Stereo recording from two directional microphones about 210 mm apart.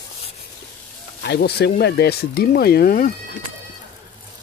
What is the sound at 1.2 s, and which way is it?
Speech, 50° left (ahead or behind).